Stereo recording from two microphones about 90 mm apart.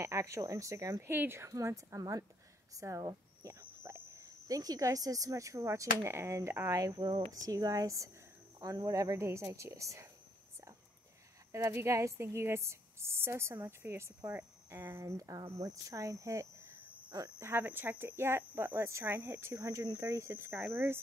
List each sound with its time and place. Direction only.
0.0 s a woman's voice: 35° right (ahead or behind)
6.7 s a woman's voice: 40° right (ahead or behind)
7.0 s speech: 55° right (ahead or behind)
7.3 s a woman's voice: 40° right (ahead or behind)
11.5 s a woman's voice: 35° right (ahead or behind)